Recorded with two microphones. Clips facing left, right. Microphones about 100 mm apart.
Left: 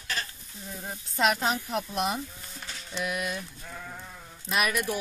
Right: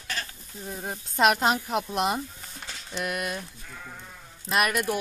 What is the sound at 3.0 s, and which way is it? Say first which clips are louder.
Speech: right 1 dB; 55° right (ahead or behind).